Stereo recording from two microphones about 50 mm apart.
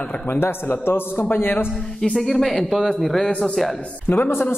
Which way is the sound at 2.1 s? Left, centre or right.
Centre.